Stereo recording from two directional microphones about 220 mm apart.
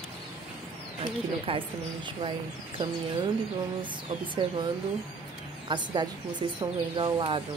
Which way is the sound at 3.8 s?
20° right (ahead or behind).